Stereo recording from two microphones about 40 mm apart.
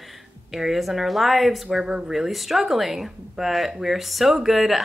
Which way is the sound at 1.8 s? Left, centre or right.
Centre.